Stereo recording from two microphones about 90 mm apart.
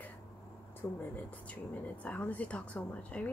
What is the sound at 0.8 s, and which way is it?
Speech, 30° left (ahead or behind).